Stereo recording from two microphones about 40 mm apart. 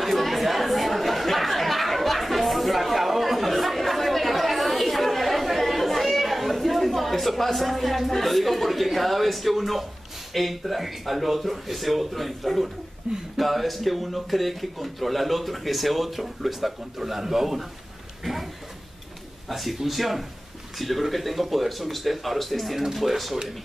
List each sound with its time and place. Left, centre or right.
0.0 s chatter: centre
10.3 s a man's voice: centre
13.0 s speech: right
13.4 s a man's voice: centre
18.2 s a sound: centre
19.5 s a man's voice: centre